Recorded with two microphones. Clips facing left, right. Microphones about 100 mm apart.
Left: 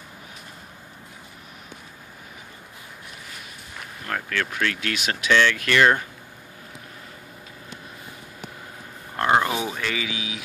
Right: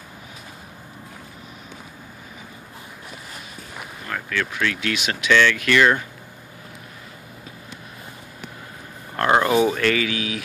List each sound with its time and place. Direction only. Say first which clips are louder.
4.1 s speech: right 1 dB; 50° left (ahead or behind)
9.3 s a sound: right 3 dB; 5° left (ahead or behind)
9.7 s speech: right 8 dB; 15° left (ahead or behind)